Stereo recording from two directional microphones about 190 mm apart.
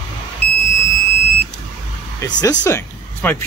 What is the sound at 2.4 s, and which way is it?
Speech, 20° left (ahead or behind).